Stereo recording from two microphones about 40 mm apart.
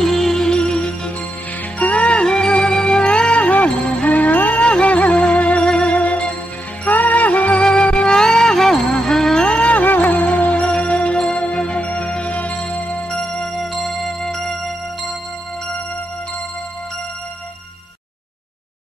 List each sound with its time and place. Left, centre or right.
0.0 s music: centre
1.8 s music: left
4.6 s music: left
6.8 s jingle bell: left
7.8 s music: left
9.7 s music: left
11.8 s music: left
13.1 s music: centre
13.6 s music: centre